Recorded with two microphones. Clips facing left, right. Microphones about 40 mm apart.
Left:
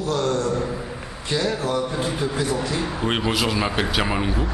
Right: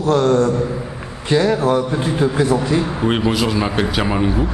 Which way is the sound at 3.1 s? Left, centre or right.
Centre.